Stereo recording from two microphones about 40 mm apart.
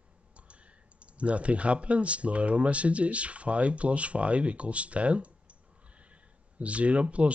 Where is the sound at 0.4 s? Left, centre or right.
Right.